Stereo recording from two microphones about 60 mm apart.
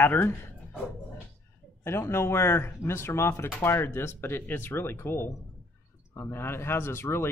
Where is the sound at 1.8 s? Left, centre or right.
Left.